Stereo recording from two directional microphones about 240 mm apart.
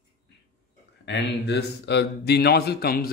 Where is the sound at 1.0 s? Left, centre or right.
Left.